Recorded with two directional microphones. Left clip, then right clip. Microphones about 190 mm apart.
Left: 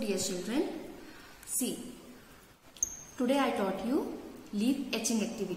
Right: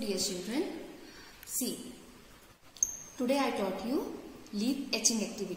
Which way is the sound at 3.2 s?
Centre (ahead or behind).